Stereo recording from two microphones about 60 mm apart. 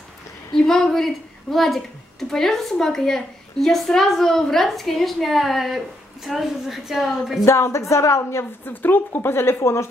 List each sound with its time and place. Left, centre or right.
0.6 s speech: centre
7.4 s speech: left
8.6 s speech: left